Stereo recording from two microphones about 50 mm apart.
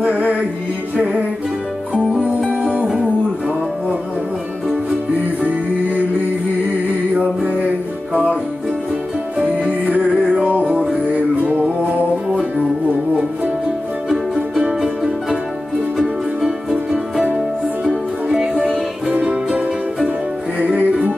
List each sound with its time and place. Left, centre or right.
0.0 s music: right
2.5 s music: right
9.4 s music: right
14.0 s music: centre
19.1 s music: right